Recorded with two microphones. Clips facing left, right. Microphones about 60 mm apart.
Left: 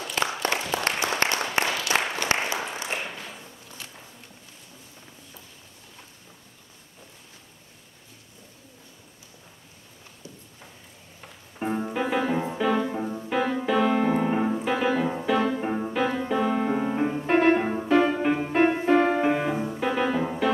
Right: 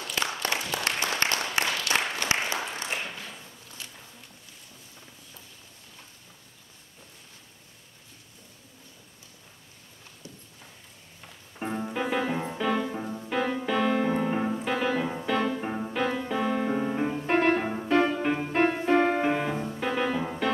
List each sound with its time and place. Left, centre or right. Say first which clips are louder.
0.2 s applause: left 3 dB; centre
2.5 s a sound: left 2 dB; centre
11.5 s music: left 3 dB; centre
13.7 s piano: left 4 dB; centre